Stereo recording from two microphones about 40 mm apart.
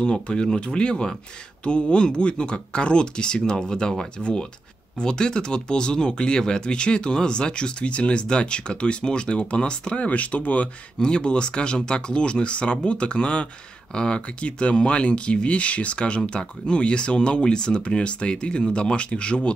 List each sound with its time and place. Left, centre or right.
0.0 s speech: left
11.0 s speech: left